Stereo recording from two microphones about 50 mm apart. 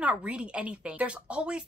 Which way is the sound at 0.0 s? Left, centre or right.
Right.